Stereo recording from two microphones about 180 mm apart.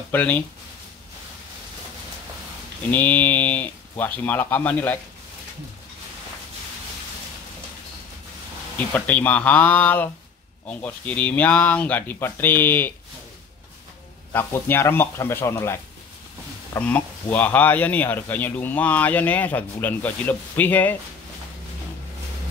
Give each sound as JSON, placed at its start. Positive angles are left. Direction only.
{"t": 0.1, "sound": "speech", "side_deg": 10}
{"t": 2.9, "sound": "speech", "side_deg": 10}
{"t": 8.7, "sound": "speech", "side_deg": 10}
{"t": 14.3, "sound": "speech", "side_deg": 10}